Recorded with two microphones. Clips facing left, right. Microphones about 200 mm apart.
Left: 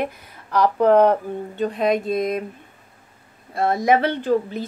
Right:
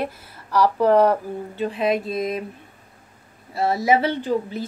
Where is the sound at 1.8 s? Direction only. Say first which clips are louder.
Left 2 dB; 5° right (ahead or behind).